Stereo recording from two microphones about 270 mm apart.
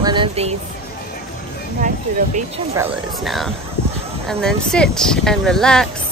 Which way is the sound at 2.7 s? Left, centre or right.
Centre.